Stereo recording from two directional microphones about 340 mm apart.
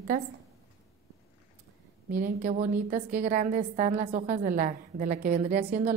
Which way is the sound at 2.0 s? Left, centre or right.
Right.